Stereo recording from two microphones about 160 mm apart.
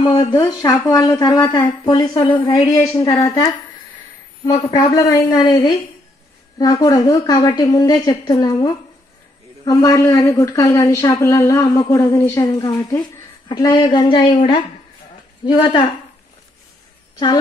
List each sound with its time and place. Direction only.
0.0 s a woman's voice: 30° left (ahead or behind)
4.5 s a woman's voice: 25° left (ahead or behind)